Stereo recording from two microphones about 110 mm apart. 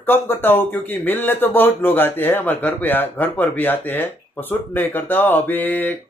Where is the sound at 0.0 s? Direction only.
20° left (ahead or behind).